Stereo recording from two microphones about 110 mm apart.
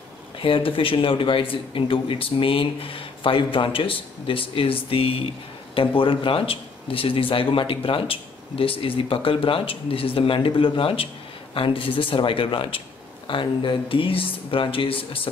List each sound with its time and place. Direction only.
0.4 s speech: 55° left (ahead or behind)